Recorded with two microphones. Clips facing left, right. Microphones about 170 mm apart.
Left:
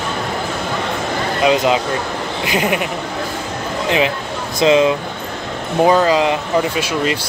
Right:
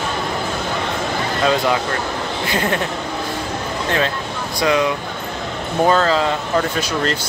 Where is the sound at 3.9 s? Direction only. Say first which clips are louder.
Left 4 dB; 15° left (ahead or behind).